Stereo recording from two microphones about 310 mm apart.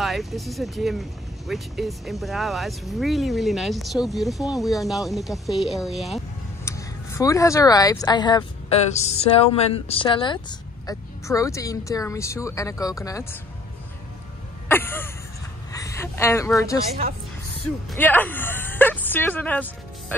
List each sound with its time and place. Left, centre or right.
0.0 s speech: centre
14.7 s a sound: centre
15.7 s a woman's voice: centre
17.8 s speech: centre